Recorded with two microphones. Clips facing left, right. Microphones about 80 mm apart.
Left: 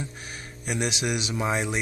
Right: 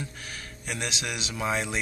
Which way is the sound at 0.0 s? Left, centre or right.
Centre.